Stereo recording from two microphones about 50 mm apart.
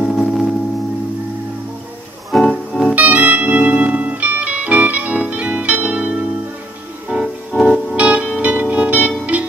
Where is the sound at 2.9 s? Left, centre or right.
Right.